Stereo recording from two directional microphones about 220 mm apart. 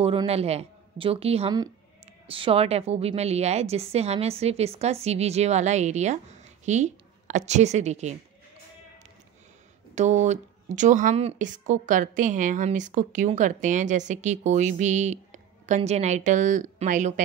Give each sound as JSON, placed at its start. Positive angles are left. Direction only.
{"t": 0.0, "sound": "a woman's voice", "side_deg": -25}
{"t": 9.9, "sound": "speech", "side_deg": -30}